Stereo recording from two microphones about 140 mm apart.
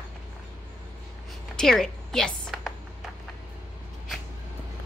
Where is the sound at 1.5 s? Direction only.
5° left (ahead or behind).